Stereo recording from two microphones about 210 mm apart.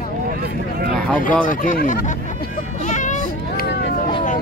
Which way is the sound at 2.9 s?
35° left (ahead or behind).